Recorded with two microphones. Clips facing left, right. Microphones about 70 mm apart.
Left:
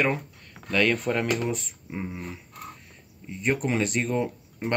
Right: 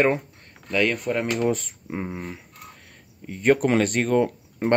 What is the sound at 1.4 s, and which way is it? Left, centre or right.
Speech, right.